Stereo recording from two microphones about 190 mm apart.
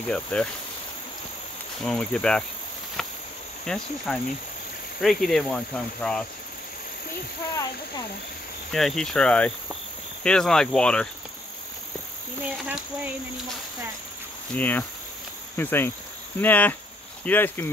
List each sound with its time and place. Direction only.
0.1 s speech: 5° left (ahead or behind)
1.8 s speech: 5° left (ahead or behind)
3.0 s cricket: centre (ahead or behind)
3.6 s speech: 5° left (ahead or behind)
8.7 s speech: centre (ahead or behind)
12.4 s speech: 10° right (ahead or behind)
14.5 s speech: 10° left (ahead or behind)